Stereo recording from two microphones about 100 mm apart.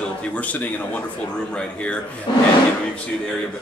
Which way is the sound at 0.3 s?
15° left (ahead or behind).